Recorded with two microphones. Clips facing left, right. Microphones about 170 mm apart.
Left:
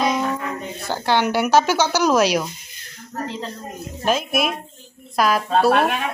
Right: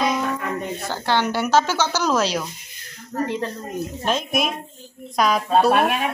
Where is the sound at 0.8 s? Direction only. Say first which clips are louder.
Left 3 dB; 10° left (ahead or behind).